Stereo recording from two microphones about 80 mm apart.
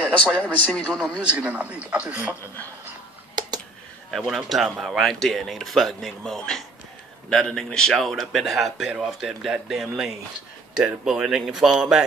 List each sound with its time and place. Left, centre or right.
0.4 s speech: centre
1.1 s a man's voice: centre
3.3 s a sound: right
4.1 s a man's voice: centre